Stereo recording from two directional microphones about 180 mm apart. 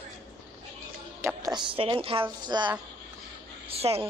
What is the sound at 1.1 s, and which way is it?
A woman's voice, 15° right (ahead or behind).